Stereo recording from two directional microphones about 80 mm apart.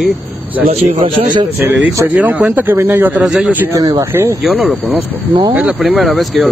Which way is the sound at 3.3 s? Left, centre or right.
Centre.